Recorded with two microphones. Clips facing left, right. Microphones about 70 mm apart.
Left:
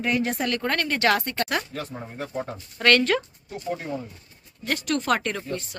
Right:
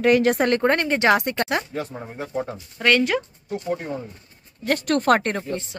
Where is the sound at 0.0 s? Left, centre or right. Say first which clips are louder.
Right 8 dB; right.